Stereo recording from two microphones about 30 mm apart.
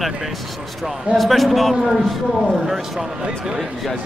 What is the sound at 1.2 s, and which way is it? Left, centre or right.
Speech, centre.